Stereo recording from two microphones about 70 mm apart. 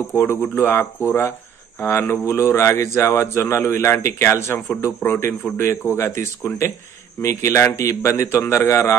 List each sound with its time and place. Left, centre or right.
0.2 s a man's voice: left